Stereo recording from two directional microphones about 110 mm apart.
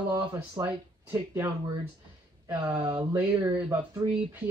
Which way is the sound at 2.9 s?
20° right (ahead or behind).